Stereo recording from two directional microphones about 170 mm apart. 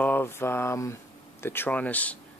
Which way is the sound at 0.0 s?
10° left (ahead or behind).